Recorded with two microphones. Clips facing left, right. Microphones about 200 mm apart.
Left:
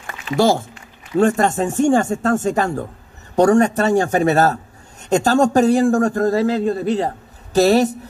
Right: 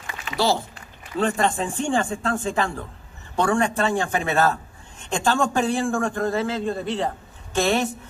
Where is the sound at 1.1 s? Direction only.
45° left (ahead or behind).